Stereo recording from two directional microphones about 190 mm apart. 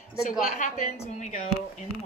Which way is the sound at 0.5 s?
35° left (ahead or behind).